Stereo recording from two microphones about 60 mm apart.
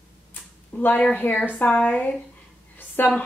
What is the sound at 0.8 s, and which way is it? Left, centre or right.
Speech, left.